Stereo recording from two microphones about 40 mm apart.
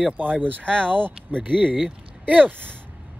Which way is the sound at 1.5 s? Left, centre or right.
Right.